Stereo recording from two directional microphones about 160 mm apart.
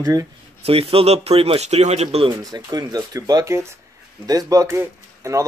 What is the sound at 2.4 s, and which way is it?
Speech, 25° right (ahead or behind).